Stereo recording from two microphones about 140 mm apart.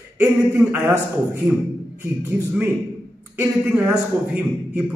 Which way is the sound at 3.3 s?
10° right (ahead or behind).